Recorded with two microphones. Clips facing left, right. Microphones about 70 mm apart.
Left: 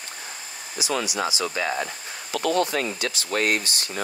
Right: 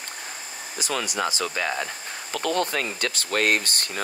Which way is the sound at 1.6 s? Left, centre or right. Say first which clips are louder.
Left 1 dB; left.